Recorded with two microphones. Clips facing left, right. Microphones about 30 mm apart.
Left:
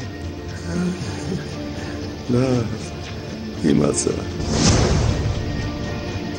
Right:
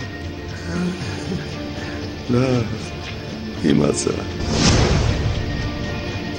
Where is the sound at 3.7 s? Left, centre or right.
Centre.